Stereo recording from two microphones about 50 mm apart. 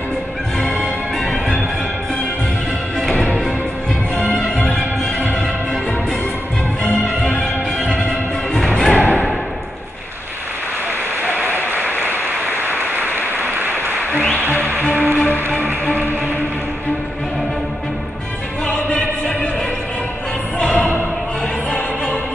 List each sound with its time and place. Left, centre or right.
4.1 s music: left
11.5 s applause: right
12.0 s a sound: right
14.4 s music: right
15.5 s music: left
18.7 s music: left
20.5 s music: left